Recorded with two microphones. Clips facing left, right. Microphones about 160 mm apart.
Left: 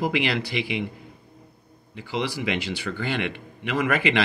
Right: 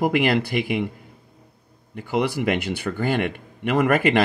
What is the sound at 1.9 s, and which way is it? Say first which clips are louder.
A man's voice: right 5 dB; 55° right (ahead or behind).